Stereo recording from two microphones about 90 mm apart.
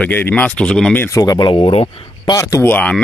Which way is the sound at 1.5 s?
90° left.